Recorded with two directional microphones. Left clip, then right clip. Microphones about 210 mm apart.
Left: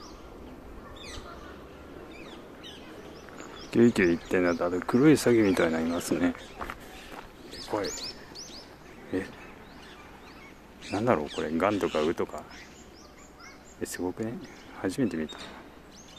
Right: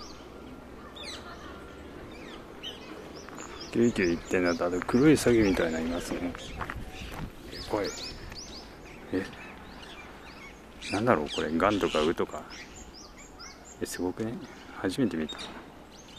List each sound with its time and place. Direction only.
3.7 s speech: 15° left (ahead or behind)
7.8 s a sound: 50° left (ahead or behind)
10.9 s speech: centre (ahead or behind)
13.7 s speech: centre (ahead or behind)